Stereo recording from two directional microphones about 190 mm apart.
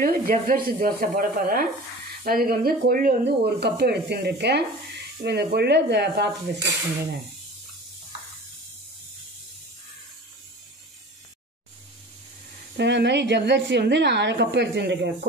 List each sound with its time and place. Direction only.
0.0 s speech: 50° right (ahead or behind)
12.7 s speech: 65° right (ahead or behind)